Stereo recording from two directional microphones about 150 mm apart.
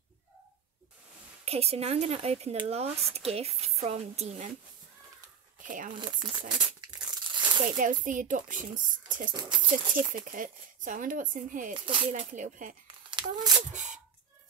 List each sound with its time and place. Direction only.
1.4 s speech: 45° right (ahead or behind)
5.6 s speech: 60° right (ahead or behind)
5.9 s speech: 30° right (ahead or behind)
6.5 s crumpling: 30° right (ahead or behind)
7.7 s speech: 60° right (ahead or behind)
11.7 s speech: 35° right (ahead or behind)
12.1 s speech: 55° right (ahead or behind)
13.1 s speech: 30° right (ahead or behind)
13.7 s speech: 55° right (ahead or behind)